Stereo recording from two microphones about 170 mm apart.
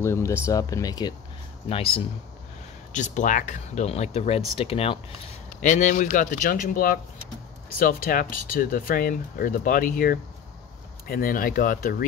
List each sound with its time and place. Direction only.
0.0 s speech: 15° left (ahead or behind)
1.7 s speech: 35° left (ahead or behind)
2.9 s speech: 45° left (ahead or behind)
5.6 s speech: 50° left (ahead or behind)